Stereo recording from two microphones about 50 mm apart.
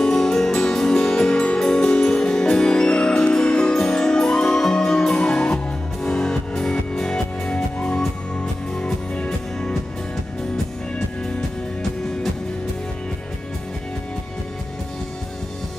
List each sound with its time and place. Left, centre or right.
0.0 s music: centre
9.2 s music: left